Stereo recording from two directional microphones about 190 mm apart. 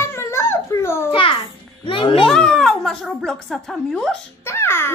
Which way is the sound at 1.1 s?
25° left (ahead or behind).